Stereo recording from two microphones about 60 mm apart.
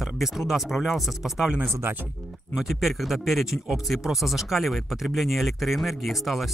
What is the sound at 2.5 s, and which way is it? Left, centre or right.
Speech, centre.